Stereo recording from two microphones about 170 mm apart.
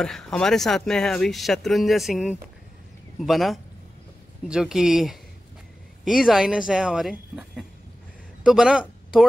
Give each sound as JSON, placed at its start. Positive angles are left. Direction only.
{"t": 0.0, "sound": "speech", "side_deg": 5}